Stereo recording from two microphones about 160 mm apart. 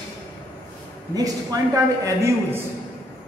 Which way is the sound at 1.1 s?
25° right (ahead or behind).